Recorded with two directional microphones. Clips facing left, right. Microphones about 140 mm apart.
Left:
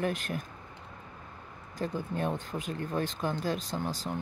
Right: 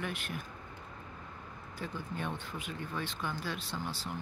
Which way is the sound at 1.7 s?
40° left (ahead or behind).